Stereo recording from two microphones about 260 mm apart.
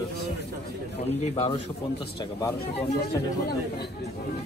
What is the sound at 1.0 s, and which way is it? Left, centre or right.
Speech, left.